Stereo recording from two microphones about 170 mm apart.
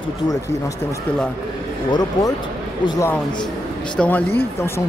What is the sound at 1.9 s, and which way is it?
A man's voice, 20° left (ahead or behind).